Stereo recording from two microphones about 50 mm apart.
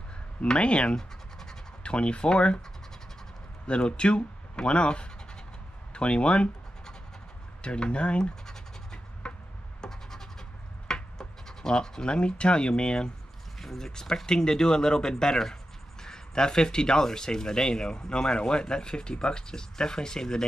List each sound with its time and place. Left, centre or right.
0.4 s scratch: left
1.8 s speech: left
3.6 s speech: left
5.9 s scratch: left
9.8 s a sound: centre
10.9 s speech: centre